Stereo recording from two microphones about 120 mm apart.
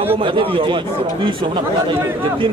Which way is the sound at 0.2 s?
45° right (ahead or behind).